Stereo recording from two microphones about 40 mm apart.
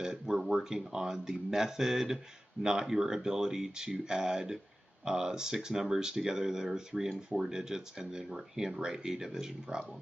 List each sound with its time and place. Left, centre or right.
0.0 s speech: centre